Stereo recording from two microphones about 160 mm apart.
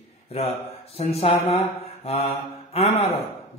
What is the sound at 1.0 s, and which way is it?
A man's voice, 40° left (ahead or behind).